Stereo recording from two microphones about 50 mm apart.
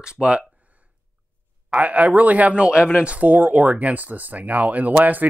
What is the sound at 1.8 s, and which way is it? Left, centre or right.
Speech, right.